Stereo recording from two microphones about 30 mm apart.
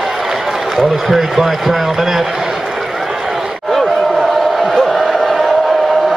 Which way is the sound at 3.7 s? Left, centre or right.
Centre.